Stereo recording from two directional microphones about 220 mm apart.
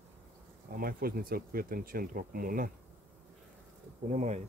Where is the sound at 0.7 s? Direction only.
40° right (ahead or behind).